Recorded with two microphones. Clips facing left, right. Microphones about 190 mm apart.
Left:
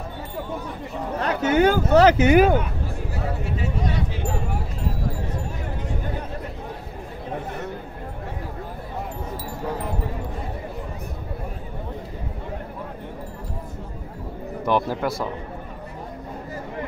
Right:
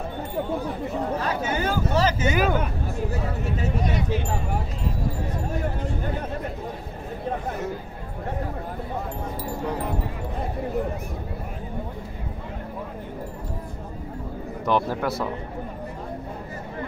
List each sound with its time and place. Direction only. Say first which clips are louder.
1.2 s speech: left 7 dB; 70° left (ahead or behind)
14.7 s a man's voice: left 1 dB; centre (ahead or behind)